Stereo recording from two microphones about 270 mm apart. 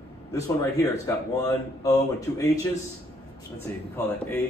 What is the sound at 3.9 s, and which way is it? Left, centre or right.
Speech, centre.